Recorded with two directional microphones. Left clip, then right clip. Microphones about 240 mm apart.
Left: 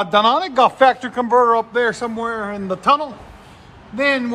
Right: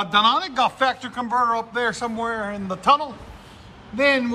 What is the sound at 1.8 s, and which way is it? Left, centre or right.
A man's voice, left.